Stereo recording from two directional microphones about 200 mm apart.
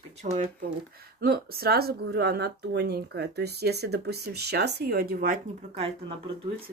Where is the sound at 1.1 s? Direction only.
50° right (ahead or behind).